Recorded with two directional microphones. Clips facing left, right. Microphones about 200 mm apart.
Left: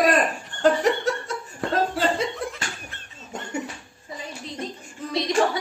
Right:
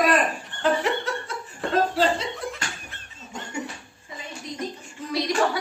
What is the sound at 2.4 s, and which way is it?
Laughter, centre (ahead or behind).